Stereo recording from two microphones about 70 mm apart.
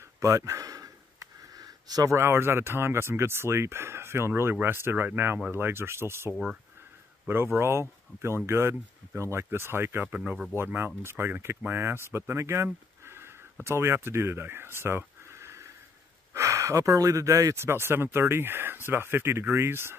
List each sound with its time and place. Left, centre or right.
0.0 s a sound: right
2.0 s speech: right
7.5 s speech: right
10.0 s speech: right
10.5 s speech: right
13.0 s a sound: right
13.7 s speech: right
17.6 s speech: right